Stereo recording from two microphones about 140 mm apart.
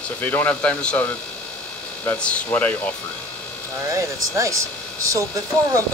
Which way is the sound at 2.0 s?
10° left (ahead or behind).